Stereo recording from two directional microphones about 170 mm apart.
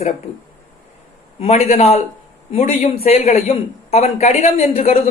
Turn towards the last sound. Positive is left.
turn(degrees=35)  # may be behind; listen again after turning